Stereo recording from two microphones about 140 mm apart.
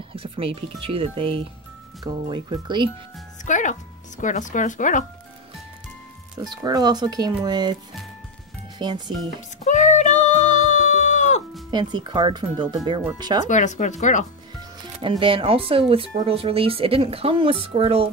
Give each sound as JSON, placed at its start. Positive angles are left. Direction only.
{"t": 0.1, "sound": "speech", "side_deg": -40}
{"t": 3.4, "sound": "speech", "side_deg": 65}
{"t": 6.5, "sound": "speech", "side_deg": -30}
{"t": 8.7, "sound": "speech", "side_deg": -30}
{"t": 9.7, "sound": "music", "side_deg": 60}
{"t": 11.7, "sound": "speech", "side_deg": -35}
{"t": 13.5, "sound": "speech", "side_deg": 60}
{"t": 15.0, "sound": "speech", "side_deg": -40}